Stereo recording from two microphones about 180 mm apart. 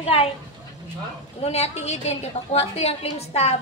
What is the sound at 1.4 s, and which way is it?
A woman's voice, 35° left (ahead or behind).